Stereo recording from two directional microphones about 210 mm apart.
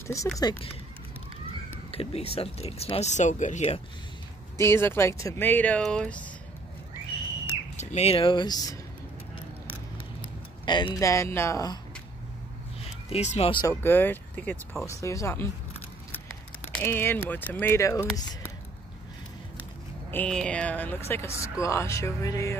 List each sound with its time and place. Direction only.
0.0 s speech: 15° left (ahead or behind)
1.9 s speech: 30° left (ahead or behind)
4.6 s speech: 10° left (ahead or behind)
7.7 s speech: 35° left (ahead or behind)
10.6 s speech: 20° left (ahead or behind)
12.8 s speech: 30° left (ahead or behind)
13.8 s speech: 10° left (ahead or behind)
16.7 s speech: 10° left (ahead or behind)
20.1 s speech: 5° left (ahead or behind)